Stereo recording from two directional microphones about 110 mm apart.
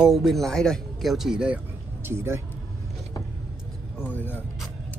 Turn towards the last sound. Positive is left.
turn(degrees=15)  # may be behind; listen again after turning